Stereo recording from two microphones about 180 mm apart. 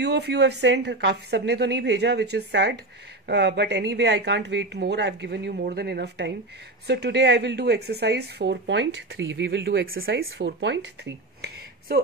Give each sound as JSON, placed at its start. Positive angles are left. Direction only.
{"t": 0.0, "sound": "speech", "side_deg": -70}